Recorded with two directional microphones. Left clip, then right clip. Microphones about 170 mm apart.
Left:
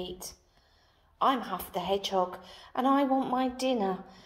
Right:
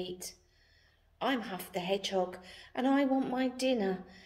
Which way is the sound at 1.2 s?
10° right (ahead or behind).